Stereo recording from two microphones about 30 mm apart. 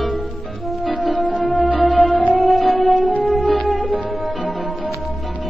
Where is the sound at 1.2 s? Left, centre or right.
Left.